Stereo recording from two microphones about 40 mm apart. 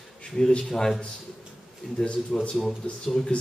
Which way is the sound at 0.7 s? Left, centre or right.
Centre.